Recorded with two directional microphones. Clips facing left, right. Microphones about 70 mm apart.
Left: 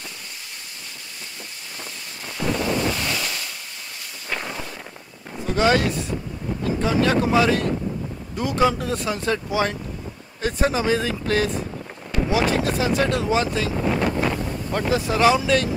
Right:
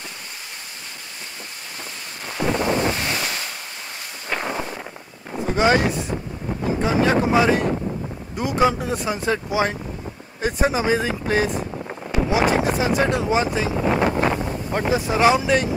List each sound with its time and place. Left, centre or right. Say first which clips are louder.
2.3 s wind noise: right 2 dB; right
4.3 s a sound: right 4 dB; right
5.3 s speech: right 1 dB; centre